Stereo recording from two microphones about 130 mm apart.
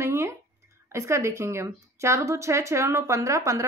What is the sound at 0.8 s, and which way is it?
A woman's voice, 20° right (ahead or behind).